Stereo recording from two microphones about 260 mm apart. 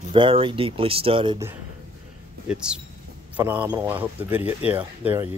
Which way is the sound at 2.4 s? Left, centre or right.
Centre.